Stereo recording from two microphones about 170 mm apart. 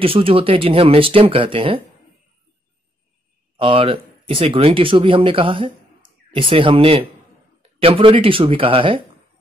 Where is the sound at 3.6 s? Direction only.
30° right (ahead or behind).